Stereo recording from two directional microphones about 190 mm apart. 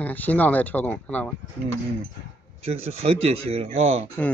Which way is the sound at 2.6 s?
30° right (ahead or behind).